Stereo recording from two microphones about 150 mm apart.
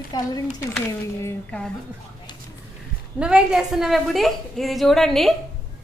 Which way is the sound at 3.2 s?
5° right (ahead or behind).